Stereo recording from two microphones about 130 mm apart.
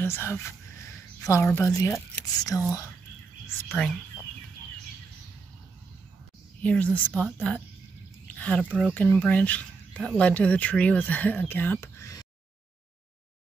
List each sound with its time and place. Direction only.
0.0 s a sound: 20° left (ahead or behind)
1.9 s speech: 25° left (ahead or behind)
3.6 s speech: 10° left (ahead or behind)
6.6 s speech: 10° left (ahead or behind)